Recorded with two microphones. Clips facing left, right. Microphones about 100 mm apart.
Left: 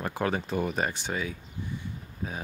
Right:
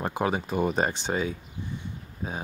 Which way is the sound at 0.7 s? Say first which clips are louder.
Right 4 dB; 30° right (ahead or behind).